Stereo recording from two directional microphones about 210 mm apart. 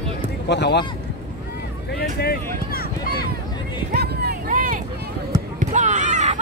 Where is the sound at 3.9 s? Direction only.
45° right (ahead or behind).